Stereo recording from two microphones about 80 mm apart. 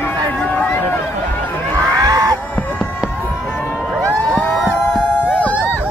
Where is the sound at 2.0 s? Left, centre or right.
Right.